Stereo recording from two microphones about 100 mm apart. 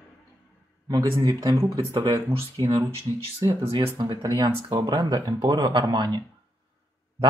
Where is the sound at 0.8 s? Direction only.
35° right (ahead or behind).